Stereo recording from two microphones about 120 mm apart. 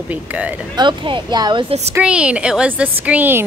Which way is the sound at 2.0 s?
10° right (ahead or behind).